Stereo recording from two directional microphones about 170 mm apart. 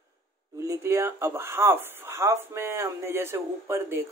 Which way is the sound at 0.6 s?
15° right (ahead or behind).